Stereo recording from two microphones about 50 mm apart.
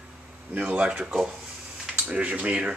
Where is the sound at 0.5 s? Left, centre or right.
Right.